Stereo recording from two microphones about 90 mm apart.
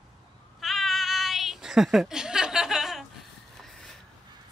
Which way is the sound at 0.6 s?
Centre (ahead or behind).